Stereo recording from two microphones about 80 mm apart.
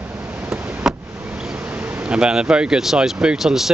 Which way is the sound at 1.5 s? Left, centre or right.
Centre.